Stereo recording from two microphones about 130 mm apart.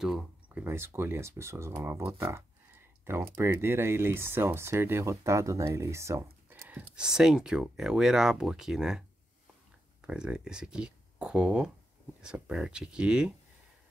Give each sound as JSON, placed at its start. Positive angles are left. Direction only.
{"t": 0.0, "sound": "a sound", "side_deg": -5}
{"t": 0.7, "sound": "speech", "side_deg": -20}
{"t": 7.0, "sound": "speech", "side_deg": -5}
{"t": 10.0, "sound": "speech", "side_deg": -5}